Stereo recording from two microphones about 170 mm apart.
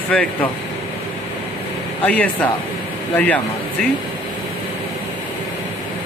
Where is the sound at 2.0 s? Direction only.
10° left (ahead or behind).